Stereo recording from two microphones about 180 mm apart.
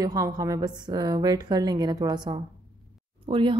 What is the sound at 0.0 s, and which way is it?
A woman's voice, 20° right (ahead or behind).